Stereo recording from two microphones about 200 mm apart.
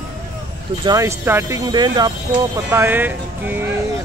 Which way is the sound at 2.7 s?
10° right (ahead or behind).